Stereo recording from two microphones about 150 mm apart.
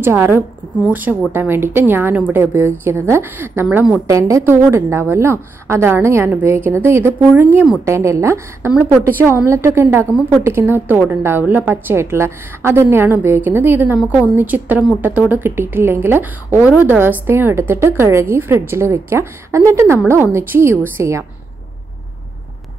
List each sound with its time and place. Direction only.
0.0 s a woman's voice: 15° right (ahead or behind)
4.1 s a woman's voice: 20° right (ahead or behind)
7.8 s a woman's voice: 20° right (ahead or behind)